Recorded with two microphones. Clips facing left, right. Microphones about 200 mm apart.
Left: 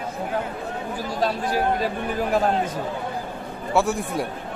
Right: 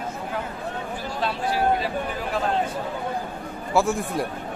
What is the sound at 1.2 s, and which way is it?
Speech, 45° left (ahead or behind).